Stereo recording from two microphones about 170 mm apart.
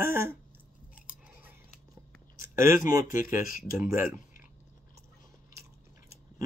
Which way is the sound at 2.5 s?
15° right (ahead or behind).